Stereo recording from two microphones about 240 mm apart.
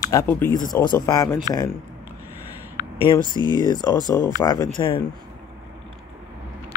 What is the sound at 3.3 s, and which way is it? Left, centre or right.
Speech, centre.